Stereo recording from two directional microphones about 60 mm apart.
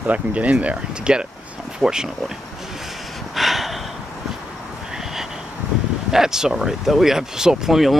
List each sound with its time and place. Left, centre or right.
0.0 s speech: right; by 2.3 s centre
3.3 s a sound: centre
6.1 s speech: centre